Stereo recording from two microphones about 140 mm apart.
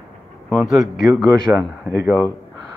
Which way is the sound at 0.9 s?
Centre (ahead or behind).